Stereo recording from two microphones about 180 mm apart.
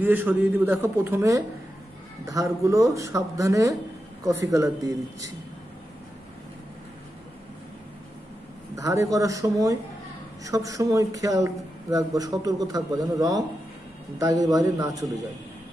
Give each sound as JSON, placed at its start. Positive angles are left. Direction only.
{"t": 0.0, "sound": "speech", "side_deg": -10}
{"t": 8.7, "sound": "speech", "side_deg": -20}